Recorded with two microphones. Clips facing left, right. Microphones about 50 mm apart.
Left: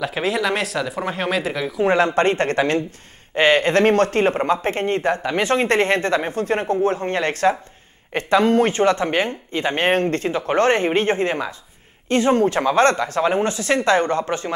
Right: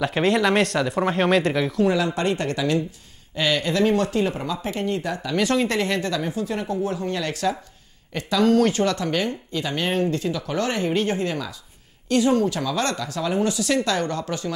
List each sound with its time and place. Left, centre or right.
0.0 s speech: centre
1.9 s speech: left